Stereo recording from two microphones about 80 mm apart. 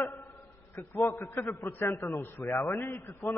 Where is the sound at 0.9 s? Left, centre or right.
Left.